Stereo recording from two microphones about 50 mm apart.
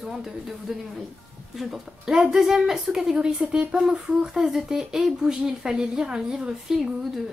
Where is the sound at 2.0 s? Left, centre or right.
Centre.